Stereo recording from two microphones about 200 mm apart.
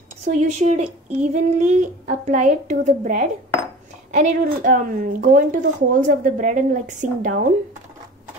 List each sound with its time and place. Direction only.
0.4 s a woman's voice: 35° right (ahead or behind)